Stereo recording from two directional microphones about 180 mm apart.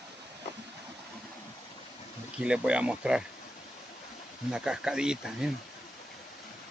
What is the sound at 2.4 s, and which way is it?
Speech, 5° right (ahead or behind).